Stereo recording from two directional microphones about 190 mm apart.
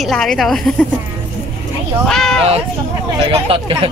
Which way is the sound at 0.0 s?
5° left (ahead or behind).